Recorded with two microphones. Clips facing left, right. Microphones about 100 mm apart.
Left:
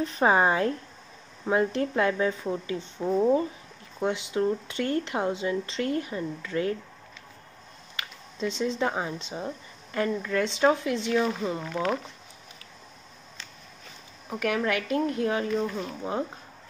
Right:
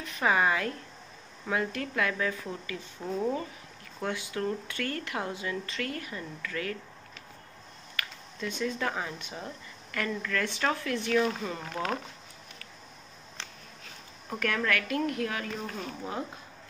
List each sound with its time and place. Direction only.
0.0 s speech: 30° left (ahead or behind)
7.9 s speech: 20° left (ahead or behind)
14.3 s a woman's voice: 15° left (ahead or behind)